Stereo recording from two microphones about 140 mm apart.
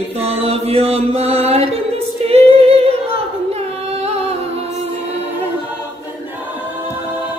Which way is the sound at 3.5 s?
45° right (ahead or behind).